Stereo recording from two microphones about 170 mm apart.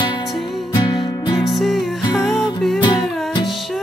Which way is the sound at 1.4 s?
Centre (ahead or behind).